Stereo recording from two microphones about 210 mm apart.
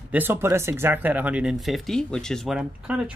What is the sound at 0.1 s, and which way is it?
Speech, 10° right (ahead or behind).